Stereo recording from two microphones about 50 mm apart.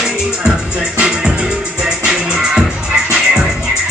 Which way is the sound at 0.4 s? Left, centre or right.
Right.